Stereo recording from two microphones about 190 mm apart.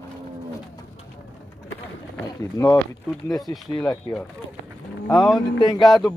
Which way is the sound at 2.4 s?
15° left (ahead or behind).